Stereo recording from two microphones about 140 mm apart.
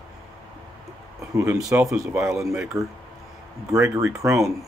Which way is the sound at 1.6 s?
20° right (ahead or behind).